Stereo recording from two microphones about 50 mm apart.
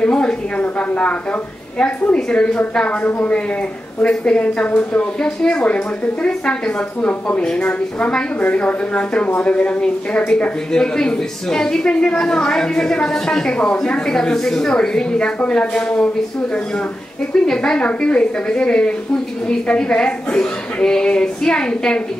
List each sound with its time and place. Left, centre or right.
0.0 s a woman's voice: centre
2.3 s a woman's voice: left
7.0 s a woman's voice: left
17.3 s a woman's voice: centre